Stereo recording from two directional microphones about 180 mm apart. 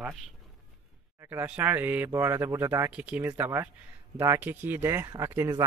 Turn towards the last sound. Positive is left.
turn(degrees=-15)  # may be behind; listen again after turning